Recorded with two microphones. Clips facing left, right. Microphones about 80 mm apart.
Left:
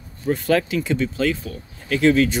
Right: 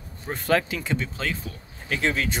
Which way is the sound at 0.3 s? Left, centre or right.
Right.